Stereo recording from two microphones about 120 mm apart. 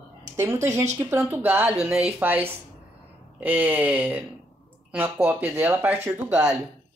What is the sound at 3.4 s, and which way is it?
Speech, 15° right (ahead or behind).